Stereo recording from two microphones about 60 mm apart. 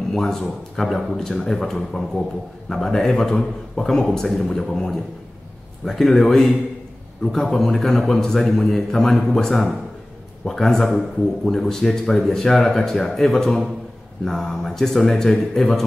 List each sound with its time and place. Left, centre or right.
0.1 s a man's voice: centre